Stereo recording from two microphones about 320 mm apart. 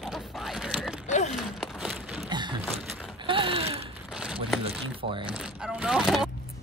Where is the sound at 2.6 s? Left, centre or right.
Centre.